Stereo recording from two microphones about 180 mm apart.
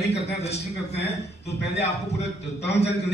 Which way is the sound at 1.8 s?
35° left (ahead or behind).